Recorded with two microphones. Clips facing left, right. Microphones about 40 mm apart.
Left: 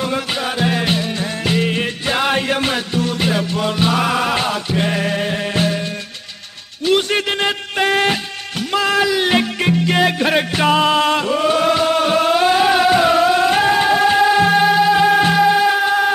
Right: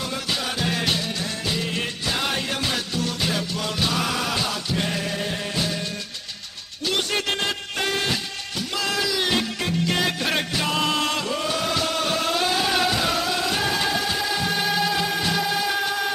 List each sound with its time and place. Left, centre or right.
0.0 s music: left
1.4 s music: left
2.7 s music: left
5.0 s music: left
6.9 s music: left
10.5 s music: left
10.8 s chant: left
12.7 s music: left